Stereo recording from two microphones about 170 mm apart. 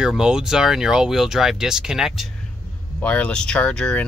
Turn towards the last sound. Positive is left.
turn(degrees=5)  # may be behind; listen again after turning